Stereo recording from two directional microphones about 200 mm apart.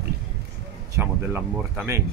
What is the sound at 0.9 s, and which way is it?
Speech, 10° right (ahead or behind).